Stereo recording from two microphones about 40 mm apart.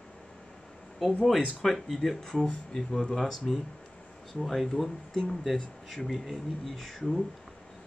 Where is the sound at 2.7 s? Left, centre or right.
Centre.